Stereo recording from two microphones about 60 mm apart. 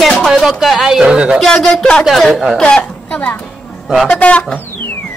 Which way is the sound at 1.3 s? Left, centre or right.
Centre.